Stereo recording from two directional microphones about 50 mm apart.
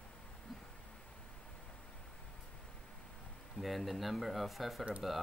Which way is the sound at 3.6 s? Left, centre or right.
Centre.